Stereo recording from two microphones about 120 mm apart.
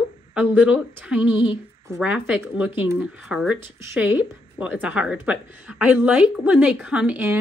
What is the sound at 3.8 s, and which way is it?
A woman's voice, 20° right (ahead or behind).